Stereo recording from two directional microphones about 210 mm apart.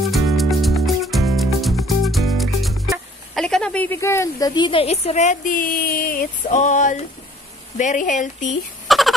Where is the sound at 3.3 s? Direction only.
5° left (ahead or behind); by 8.4 s 35° left (ahead or behind).